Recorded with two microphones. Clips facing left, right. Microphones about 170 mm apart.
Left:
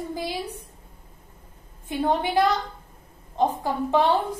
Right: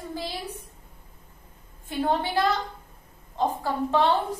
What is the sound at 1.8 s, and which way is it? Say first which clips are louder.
A woman's voice: left 2 dB; 15° left (ahead or behind).